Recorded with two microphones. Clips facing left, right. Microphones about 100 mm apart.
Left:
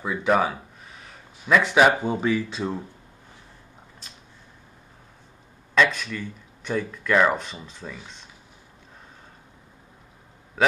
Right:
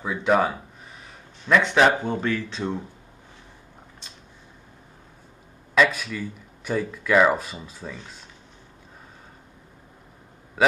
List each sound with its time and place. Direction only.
0.0 s speech: centre (ahead or behind)
1.0 s a sound: 5° left (ahead or behind)
1.9 s speech: 10° left (ahead or behind)
5.8 s speech: 5° right (ahead or behind)